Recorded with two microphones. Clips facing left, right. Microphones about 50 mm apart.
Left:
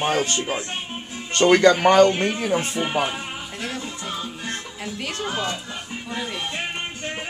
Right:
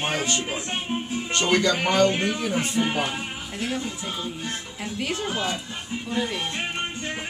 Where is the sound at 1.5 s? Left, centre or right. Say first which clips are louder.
Left 7 dB; left.